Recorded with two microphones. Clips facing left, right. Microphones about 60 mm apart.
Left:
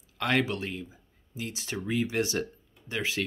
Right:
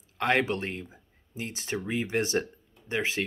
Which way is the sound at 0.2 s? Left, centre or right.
Right.